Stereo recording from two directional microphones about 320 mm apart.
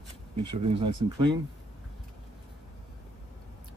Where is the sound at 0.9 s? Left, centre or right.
Centre.